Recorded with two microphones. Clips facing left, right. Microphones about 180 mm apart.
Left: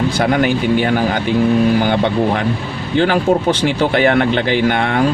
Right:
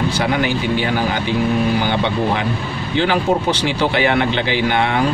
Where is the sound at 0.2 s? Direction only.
50° left (ahead or behind).